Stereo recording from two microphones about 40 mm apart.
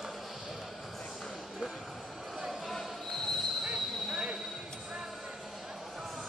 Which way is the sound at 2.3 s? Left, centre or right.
Centre.